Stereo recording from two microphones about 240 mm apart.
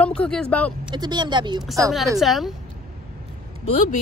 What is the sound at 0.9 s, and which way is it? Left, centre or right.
Speech, centre.